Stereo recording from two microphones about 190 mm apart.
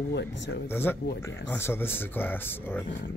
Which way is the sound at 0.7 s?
10° left (ahead or behind).